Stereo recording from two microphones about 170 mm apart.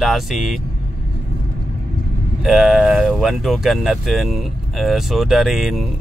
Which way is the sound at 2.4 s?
5° right (ahead or behind).